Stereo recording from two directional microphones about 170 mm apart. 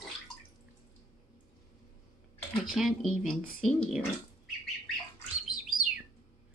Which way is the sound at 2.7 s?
Centre (ahead or behind).